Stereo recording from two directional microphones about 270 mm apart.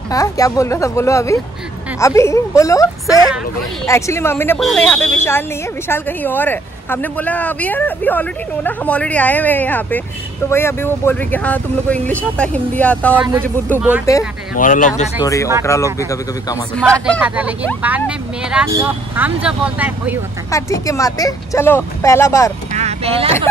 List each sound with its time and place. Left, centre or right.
0.1 s speech: centre
13.1 s speech: centre
14.5 s speech: left
15.2 s speech: centre
16.8 s speech: centre
20.5 s speech: centre
22.7 s speech: right